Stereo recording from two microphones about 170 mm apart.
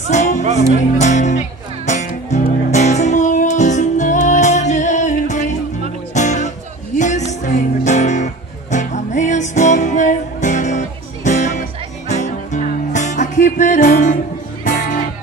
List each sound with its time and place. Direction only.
0.1 s speech: 45° left (ahead or behind)
1.9 s music: 45° left (ahead or behind)